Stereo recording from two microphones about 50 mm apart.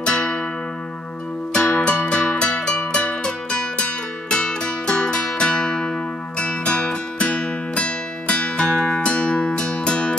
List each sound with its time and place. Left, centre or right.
0.0 s music: centre
1.5 s music: centre